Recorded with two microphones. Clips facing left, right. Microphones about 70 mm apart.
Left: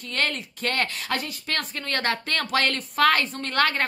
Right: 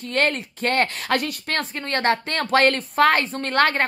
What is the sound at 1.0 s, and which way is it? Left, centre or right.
Speech, right.